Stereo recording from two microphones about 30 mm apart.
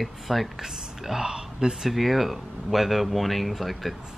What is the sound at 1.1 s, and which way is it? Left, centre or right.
Speech, right.